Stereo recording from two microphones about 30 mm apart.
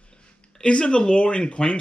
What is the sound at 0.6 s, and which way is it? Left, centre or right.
Speech, left.